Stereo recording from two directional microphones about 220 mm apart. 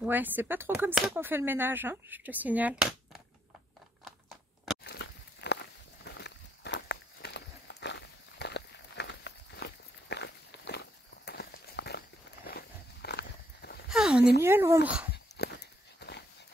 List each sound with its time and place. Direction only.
0.0 s speech: 10° right (ahead or behind)
4.8 s walk: 50° left (ahead or behind)
13.8 s a sound: 5° right (ahead or behind)
14.4 s speech: 10° right (ahead or behind)
15.3 s walk: 50° left (ahead or behind)